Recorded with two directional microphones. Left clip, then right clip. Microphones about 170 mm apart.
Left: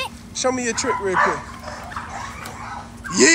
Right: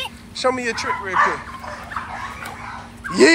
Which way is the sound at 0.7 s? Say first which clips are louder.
Left 1 dB; 30° left (ahead or behind).